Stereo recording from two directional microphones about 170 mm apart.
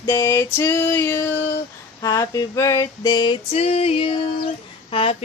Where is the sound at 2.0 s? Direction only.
20° left (ahead or behind).